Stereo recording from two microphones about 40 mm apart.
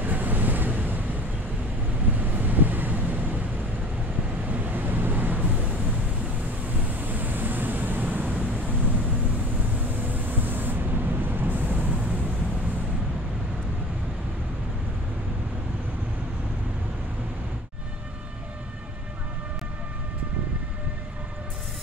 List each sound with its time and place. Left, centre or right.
0.0 s vehicle: right
4.5 s vehicle: right
6.9 s waves: right
10.0 s vehicle: right